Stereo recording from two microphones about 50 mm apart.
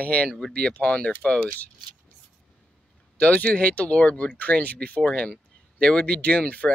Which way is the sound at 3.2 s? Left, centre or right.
Left.